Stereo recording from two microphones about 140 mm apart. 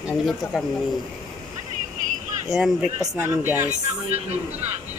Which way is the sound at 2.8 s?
20° right (ahead or behind).